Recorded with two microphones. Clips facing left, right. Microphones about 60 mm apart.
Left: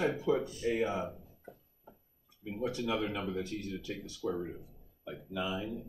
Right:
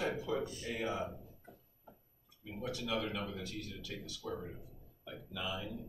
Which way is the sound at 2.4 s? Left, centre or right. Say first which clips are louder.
Left 6 dB; left.